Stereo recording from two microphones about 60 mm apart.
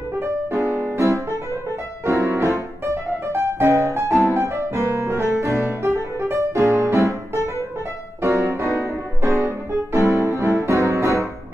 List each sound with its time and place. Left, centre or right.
0.2 s music: right
4.3 s piano: right
5.5 s music: right
6.2 s music: right
8.2 s music: right